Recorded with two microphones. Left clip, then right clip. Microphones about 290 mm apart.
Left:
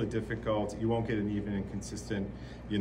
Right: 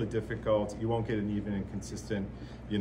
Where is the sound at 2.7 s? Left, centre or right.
Centre.